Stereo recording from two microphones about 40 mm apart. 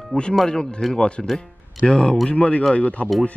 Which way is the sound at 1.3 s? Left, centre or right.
Left.